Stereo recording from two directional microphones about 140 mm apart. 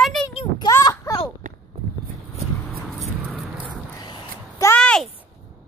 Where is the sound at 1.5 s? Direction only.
60° right (ahead or behind).